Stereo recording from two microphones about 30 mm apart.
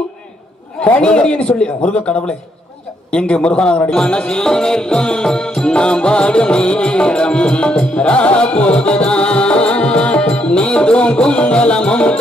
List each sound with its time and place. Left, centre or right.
0.9 s music: left
4.5 s music: centre; by 12.2 s left